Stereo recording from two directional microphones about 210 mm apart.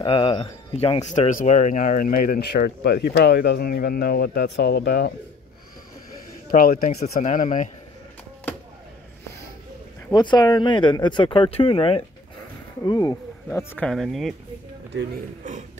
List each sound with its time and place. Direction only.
0.0 s speech: 25° left (ahead or behind); by 5.1 s 50° left (ahead or behind)
6.5 s speech: 40° left (ahead or behind)
10.1 s speech: 20° left (ahead or behind); by 14.3 s centre (ahead or behind)